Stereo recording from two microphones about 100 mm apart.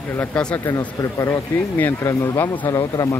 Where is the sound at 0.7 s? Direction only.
30° left (ahead or behind).